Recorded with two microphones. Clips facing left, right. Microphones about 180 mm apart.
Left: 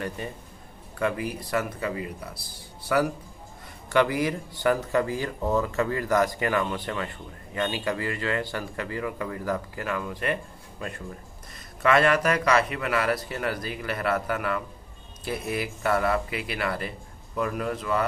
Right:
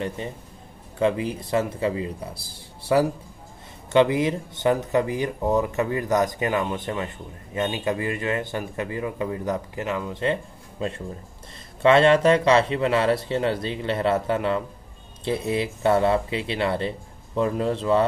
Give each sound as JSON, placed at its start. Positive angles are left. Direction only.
{"t": 0.0, "sound": "speech", "side_deg": -25}